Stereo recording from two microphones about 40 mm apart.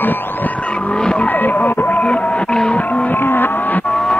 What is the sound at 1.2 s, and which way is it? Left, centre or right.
Music, left.